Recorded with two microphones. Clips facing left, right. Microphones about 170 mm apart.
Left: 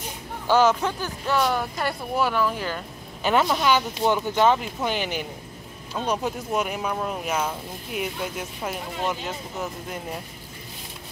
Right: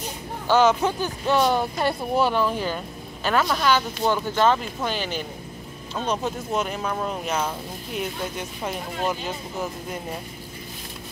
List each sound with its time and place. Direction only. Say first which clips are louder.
0.5 s speech: right 1 dB; 10° left (ahead or behind)
0.8 s speech: right 3 dB; 20° right (ahead or behind)
3.3 s speech: left 1 dB; 15° left (ahead or behind); by 9.7 s centre (ahead or behind)